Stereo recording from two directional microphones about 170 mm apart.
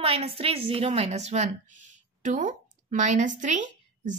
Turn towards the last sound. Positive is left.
turn(degrees=-45)  # may be behind; listen again after turning